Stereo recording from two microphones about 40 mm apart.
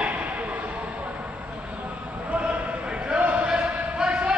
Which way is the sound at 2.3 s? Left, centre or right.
Right.